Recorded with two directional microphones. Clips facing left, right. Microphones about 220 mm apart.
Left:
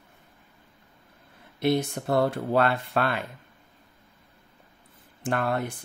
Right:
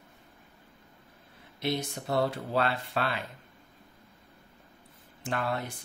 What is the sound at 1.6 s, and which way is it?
Speech, 55° left (ahead or behind).